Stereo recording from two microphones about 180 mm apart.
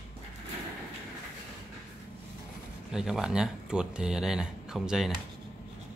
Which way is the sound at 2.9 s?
5° right (ahead or behind).